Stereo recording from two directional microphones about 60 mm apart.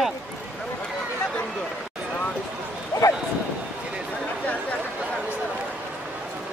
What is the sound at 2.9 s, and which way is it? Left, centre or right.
Dog, left.